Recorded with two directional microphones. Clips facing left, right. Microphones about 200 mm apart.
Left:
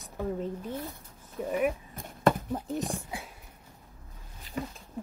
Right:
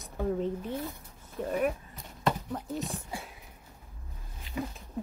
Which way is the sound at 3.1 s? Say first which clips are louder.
Even; centre (ahead or behind).